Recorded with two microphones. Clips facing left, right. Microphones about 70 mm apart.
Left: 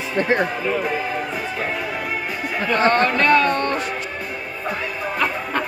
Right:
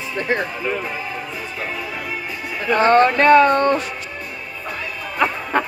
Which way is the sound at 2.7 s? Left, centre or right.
Right.